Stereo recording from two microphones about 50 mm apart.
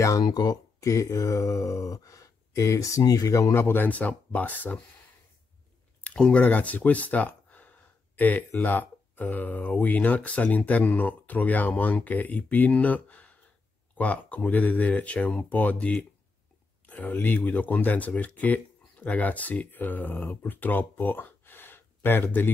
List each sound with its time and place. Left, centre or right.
0.7 s speech: left
3.5 s speech: left
3.8 s speech: left
6.3 s speech: left
16.8 s speech: left